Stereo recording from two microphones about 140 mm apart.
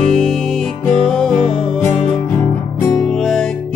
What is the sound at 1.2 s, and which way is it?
Music, 5° left (ahead or behind).